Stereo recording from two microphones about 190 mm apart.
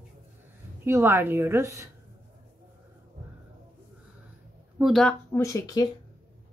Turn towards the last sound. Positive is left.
turn(degrees=20)  # may be behind; listen again after turning